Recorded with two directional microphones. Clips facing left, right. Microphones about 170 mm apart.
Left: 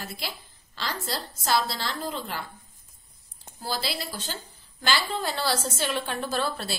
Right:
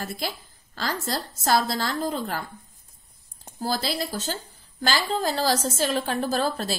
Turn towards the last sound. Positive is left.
turn(degrees=-40)  # may be behind; listen again after turning